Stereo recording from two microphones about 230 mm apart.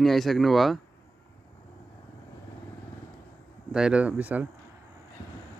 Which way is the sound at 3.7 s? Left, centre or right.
Centre.